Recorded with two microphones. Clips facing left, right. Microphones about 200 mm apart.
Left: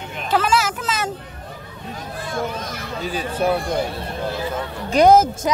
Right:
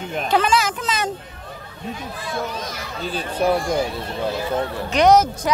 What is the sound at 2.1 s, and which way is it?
Children playing, 55° left (ahead or behind).